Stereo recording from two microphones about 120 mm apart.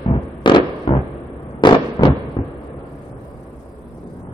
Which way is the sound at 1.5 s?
40° left (ahead or behind).